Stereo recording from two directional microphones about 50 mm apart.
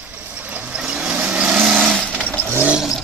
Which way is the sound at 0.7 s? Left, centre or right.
Centre.